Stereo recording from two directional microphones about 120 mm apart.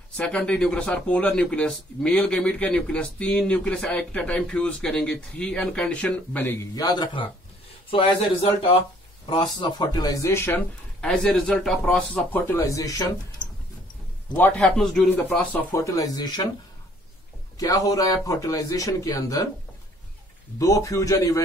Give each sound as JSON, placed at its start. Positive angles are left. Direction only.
{"t": 0.2, "sound": "speech", "side_deg": 10}
{"t": 6.7, "sound": "speech", "side_deg": 35}
{"t": 7.9, "sound": "a man's voice", "side_deg": 50}
{"t": 9.2, "sound": "speech", "side_deg": 40}
{"t": 11.0, "sound": "speech", "side_deg": 10}
{"t": 12.5, "sound": "a man's voice", "side_deg": 30}
{"t": 14.3, "sound": "speech", "side_deg": 10}
{"t": 15.7, "sound": "speech", "side_deg": 25}
{"t": 17.6, "sound": "a man's voice", "side_deg": 30}
{"t": 20.5, "sound": "a man's voice", "side_deg": 25}